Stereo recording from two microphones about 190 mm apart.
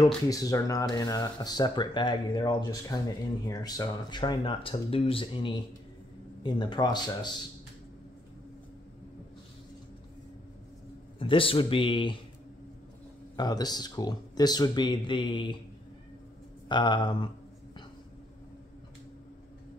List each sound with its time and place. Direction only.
0.0 s speech: 20° left (ahead or behind)
11.1 s speech: 30° left (ahead or behind)
13.4 s speech: 20° left (ahead or behind)
16.6 s speech: 25° left (ahead or behind)